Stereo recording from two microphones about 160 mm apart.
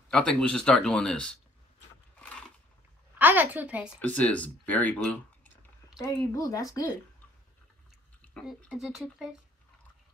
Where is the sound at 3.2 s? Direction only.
10° right (ahead or behind).